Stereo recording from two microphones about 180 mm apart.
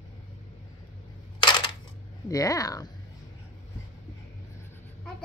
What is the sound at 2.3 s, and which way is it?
Speech, 20° left (ahead or behind).